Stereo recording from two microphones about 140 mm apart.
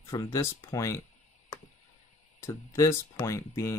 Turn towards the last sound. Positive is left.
turn(degrees=20)  # may be behind; listen again after turning